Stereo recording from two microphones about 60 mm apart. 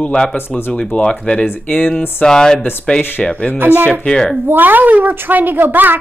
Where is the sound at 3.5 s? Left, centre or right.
Right.